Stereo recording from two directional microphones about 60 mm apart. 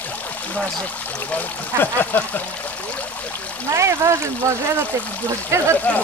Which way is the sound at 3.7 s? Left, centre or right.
Right.